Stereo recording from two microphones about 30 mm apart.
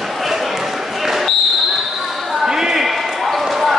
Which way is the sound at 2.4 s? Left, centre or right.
Right.